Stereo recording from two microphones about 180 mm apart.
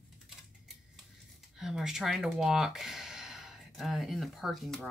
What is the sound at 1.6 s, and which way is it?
Speech, centre (ahead or behind).